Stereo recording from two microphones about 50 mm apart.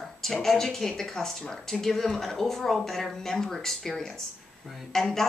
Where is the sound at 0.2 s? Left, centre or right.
Centre.